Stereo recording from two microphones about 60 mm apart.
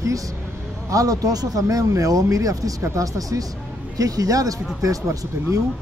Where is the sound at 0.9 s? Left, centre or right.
Right.